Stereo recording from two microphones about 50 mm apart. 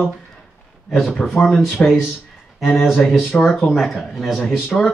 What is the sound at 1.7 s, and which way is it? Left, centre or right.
Speech, centre.